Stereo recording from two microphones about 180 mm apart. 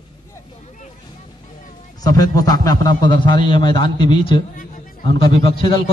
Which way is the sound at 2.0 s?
20° left (ahead or behind).